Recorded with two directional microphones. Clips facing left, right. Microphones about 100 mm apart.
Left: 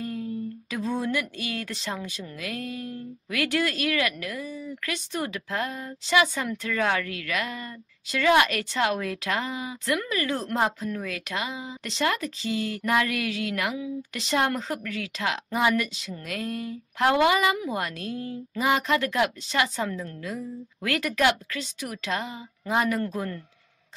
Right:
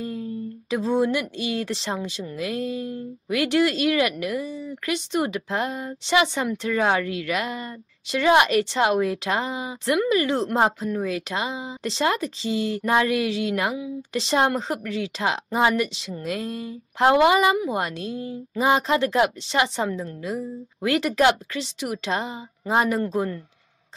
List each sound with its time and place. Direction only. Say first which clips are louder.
0.0 s speech: right 1 dB; 25° right (ahead or behind)